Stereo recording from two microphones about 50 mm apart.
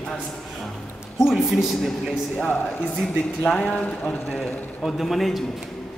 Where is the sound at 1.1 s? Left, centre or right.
Centre.